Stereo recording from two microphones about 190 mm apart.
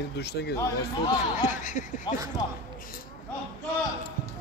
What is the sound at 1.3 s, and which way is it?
Speech, 40° left (ahead or behind).